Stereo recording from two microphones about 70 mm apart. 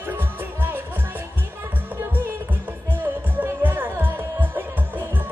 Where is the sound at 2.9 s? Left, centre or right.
Right.